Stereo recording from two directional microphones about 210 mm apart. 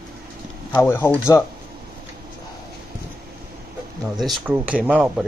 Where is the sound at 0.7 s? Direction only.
10° left (ahead or behind).